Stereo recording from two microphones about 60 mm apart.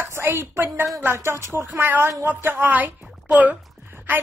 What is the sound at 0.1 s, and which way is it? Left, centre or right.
A woman's voice, right.